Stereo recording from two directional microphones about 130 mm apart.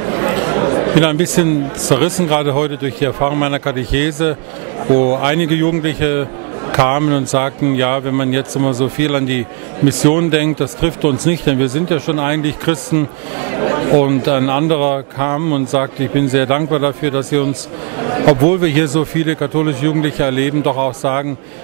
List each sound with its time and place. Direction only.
0.0 s speech: 25° right (ahead or behind)